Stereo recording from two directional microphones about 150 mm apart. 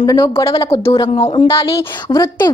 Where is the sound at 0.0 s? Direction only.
25° left (ahead or behind).